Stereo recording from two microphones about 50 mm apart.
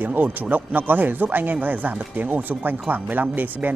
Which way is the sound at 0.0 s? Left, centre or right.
Right.